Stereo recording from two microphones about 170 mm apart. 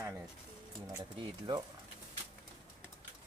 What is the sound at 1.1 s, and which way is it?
Speech, 25° right (ahead or behind).